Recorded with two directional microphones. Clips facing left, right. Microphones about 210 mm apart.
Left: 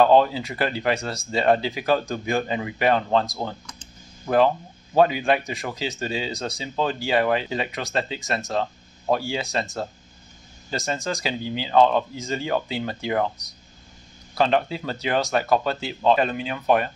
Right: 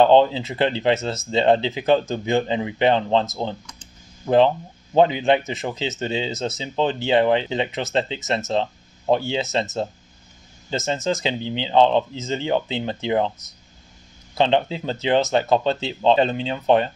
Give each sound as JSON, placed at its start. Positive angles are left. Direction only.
{"t": 0.0, "sound": "speech", "side_deg": -25}
{"t": 4.9, "sound": "speech", "side_deg": -20}
{"t": 10.7, "sound": "speech", "side_deg": -20}
{"t": 14.3, "sound": "speech", "side_deg": -20}